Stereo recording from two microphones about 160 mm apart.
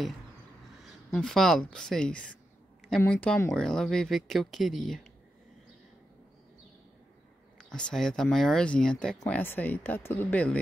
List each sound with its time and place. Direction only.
0.8 s speech: 5° left (ahead or behind)
7.5 s speech: 5° left (ahead or behind)